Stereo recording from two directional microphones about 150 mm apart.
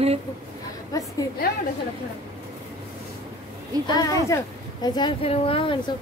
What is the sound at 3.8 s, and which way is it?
A woman's voice, 25° left (ahead or behind).